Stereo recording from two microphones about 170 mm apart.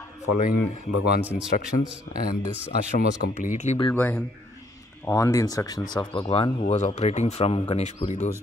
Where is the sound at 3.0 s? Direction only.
45° left (ahead or behind).